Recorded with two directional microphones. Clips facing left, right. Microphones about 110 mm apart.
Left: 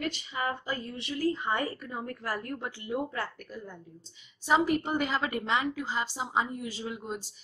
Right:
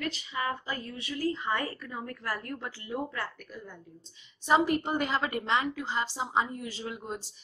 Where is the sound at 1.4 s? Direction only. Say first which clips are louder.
Left 1 dB; 15° left (ahead or behind).